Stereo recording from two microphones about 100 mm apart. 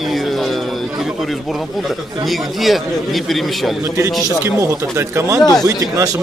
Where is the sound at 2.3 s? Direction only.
Centre (ahead or behind).